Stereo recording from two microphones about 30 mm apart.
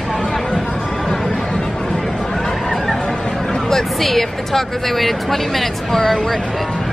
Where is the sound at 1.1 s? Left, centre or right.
Centre.